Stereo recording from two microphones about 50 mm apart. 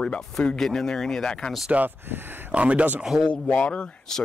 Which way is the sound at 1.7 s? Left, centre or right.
Right.